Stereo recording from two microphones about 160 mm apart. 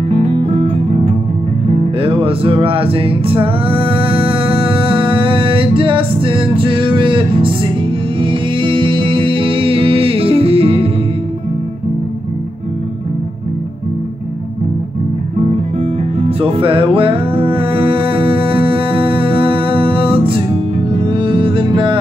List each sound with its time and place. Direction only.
0.4 s music: 35° right (ahead or behind)
15.4 s music: 40° right (ahead or behind)